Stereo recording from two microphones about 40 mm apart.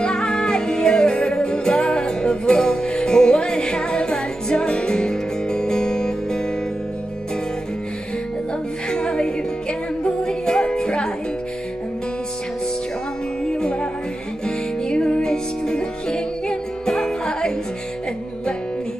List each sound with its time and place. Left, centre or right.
0.0 s music: centre
8.9 s music: left
13.5 s music: left
14.9 s music: left